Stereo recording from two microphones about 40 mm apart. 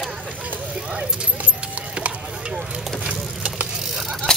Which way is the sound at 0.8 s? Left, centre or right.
Right.